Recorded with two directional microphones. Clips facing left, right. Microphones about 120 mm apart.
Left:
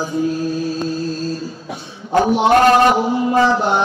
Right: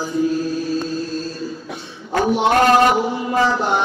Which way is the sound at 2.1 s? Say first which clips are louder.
Left 3 dB; 25° left (ahead or behind).